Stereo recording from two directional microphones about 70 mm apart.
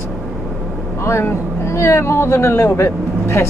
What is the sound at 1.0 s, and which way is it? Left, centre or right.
Speech, left.